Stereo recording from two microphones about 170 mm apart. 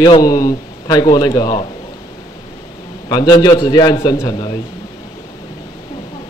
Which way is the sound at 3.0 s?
25° left (ahead or behind).